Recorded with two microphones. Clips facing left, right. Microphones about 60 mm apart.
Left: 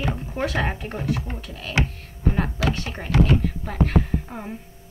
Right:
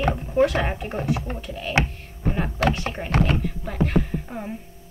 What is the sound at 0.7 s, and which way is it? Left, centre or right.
A woman's voice, right.